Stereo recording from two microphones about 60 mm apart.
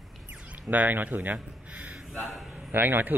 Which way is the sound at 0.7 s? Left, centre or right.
Right.